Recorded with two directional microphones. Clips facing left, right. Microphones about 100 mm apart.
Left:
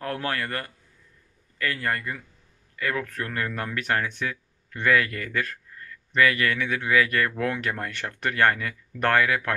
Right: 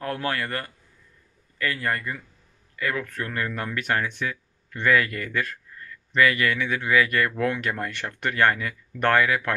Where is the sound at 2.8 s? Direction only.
40° left (ahead or behind).